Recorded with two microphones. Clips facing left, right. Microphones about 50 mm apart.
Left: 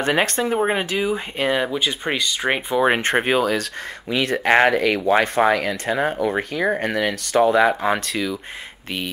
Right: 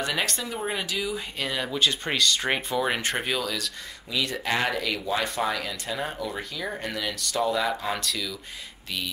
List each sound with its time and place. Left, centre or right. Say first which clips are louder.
0.0 s speech: left 9 dB; left
1.7 s speech: left 3 dB; centre
2.8 s speech: left 8 dB; left